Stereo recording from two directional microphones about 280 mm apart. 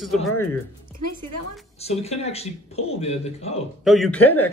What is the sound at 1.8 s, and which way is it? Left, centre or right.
Speech, left.